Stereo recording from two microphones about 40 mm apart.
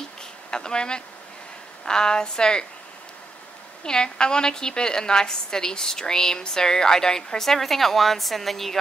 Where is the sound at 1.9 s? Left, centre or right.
Centre.